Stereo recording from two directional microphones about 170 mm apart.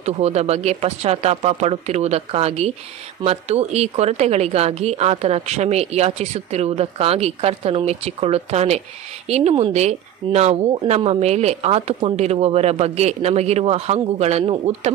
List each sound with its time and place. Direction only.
0.0 s a woman's voice: 40° right (ahead or behind)